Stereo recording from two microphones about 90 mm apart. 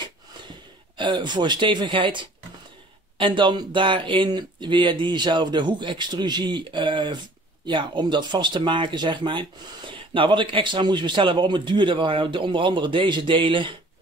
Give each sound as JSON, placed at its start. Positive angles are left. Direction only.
{"t": 0.9, "sound": "speech", "side_deg": -60}